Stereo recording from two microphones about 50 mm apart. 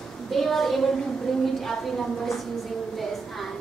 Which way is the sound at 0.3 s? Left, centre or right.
Centre.